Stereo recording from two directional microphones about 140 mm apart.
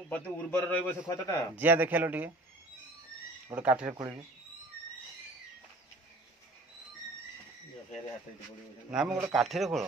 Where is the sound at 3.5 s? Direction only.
10° right (ahead or behind).